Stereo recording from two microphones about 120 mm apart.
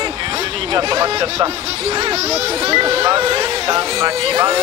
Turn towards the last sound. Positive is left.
turn(degrees=-45)  # may be behind; listen again after turning